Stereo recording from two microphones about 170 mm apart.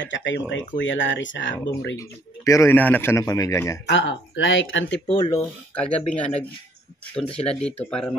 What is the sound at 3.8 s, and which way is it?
Speech, 90° left.